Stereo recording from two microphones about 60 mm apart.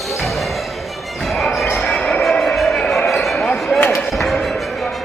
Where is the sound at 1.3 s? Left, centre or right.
Centre.